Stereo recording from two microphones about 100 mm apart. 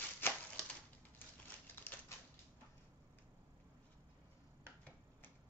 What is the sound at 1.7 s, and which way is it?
Typewriter, 20° left (ahead or behind).